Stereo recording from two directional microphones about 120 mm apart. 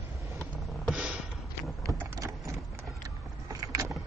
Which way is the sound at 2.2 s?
25° right (ahead or behind).